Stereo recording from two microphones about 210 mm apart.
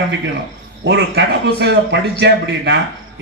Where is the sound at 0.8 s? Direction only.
60° right (ahead or behind).